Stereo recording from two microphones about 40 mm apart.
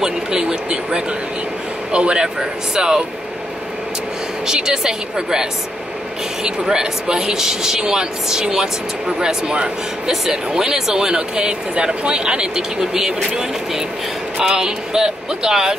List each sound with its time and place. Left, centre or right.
0.0 s speech: centre
1.9 s speech: right
2.2 s speech: centre
4.5 s speech: centre
14.5 s speech: centre